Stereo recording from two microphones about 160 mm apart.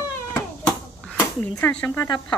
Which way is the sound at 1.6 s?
5° left (ahead or behind).